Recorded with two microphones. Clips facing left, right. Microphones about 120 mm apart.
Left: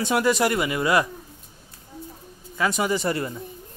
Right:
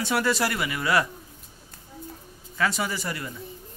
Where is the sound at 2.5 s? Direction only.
15° left (ahead or behind).